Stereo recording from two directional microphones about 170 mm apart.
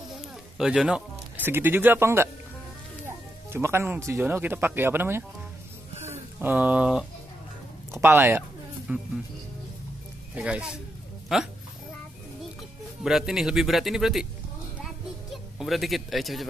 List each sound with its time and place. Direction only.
0.6 s speech: 5° right (ahead or behind)
3.5 s speech: 15° right (ahead or behind)
5.9 s a sound: 40° right (ahead or behind)
6.4 s speech: 10° right (ahead or behind)
7.9 s a sound: 15° right (ahead or behind)
10.3 s speech: 5° right (ahead or behind)
13.0 s speech: centre (ahead or behind)
15.3 s speech: centre (ahead or behind)